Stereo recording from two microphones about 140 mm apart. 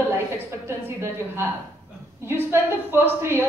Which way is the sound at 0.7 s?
15° right (ahead or behind).